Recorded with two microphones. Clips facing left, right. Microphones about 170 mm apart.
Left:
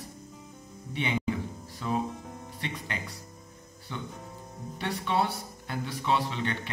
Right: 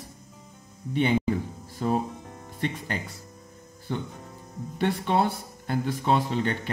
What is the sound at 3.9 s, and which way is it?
Speech, 50° right (ahead or behind).